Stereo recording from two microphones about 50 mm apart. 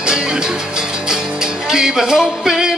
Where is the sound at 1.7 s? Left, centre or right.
Centre.